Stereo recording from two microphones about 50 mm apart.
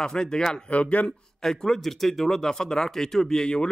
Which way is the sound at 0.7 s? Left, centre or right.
Left.